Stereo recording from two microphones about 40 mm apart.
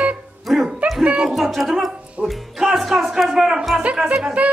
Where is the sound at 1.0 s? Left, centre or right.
Right.